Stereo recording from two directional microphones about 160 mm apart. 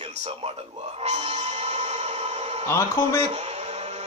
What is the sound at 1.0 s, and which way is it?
Music, 45° right (ahead or behind).